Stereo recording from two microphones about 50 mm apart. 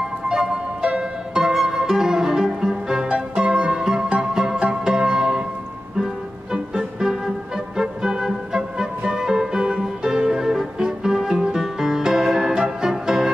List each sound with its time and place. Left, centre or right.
0.3 s music: centre
1.3 s music: centre